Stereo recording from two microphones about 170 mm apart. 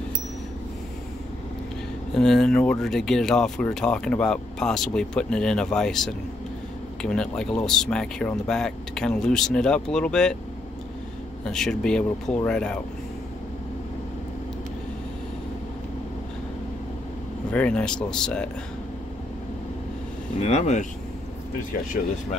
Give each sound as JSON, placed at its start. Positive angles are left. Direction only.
{"t": 2.1, "sound": "speech", "side_deg": 5}
{"t": 11.4, "sound": "speech", "side_deg": 5}
{"t": 17.5, "sound": "speech", "side_deg": 5}
{"t": 20.3, "sound": "speech", "side_deg": 45}